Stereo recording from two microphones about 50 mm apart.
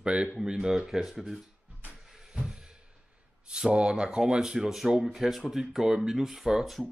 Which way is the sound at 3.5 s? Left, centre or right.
Centre.